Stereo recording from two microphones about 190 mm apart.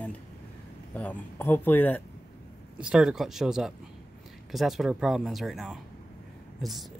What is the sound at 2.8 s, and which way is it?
Speech, 5° right (ahead or behind).